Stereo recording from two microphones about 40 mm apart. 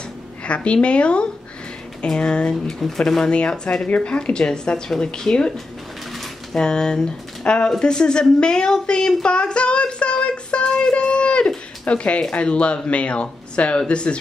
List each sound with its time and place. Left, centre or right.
0.5 s speech: left
3.0 s speech: centre
3.3 s speech: left
6.5 s speech: centre
8.8 s a sound: left
10.7 s speech: left